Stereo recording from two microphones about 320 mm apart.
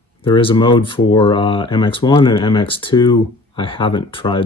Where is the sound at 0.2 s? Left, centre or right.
Centre.